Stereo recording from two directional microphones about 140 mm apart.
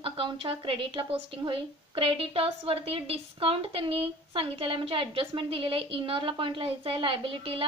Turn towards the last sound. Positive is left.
turn(degrees=-40)  # may be behind; listen again after turning